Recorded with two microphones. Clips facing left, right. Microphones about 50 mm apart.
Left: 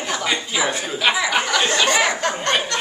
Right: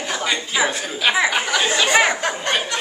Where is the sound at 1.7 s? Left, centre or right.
Centre.